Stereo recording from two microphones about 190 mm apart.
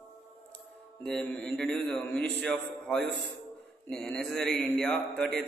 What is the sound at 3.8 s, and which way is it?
A man's voice, 5° left (ahead or behind).